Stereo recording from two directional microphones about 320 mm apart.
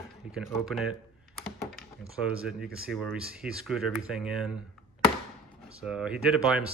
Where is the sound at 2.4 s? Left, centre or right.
Centre.